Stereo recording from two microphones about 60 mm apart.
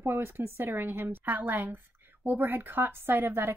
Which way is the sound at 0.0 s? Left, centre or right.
Right.